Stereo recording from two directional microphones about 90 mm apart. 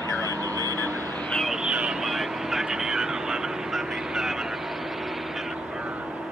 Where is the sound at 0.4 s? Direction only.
40° right (ahead or behind).